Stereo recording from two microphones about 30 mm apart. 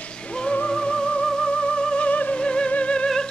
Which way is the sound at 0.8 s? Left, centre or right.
Left.